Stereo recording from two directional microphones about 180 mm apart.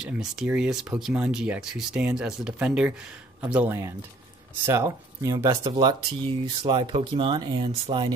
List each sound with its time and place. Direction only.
0.0 s speech: 5° right (ahead or behind); by 8.1 s 30° right (ahead or behind)